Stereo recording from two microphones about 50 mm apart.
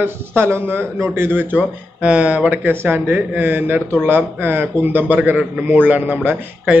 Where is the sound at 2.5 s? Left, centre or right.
Right.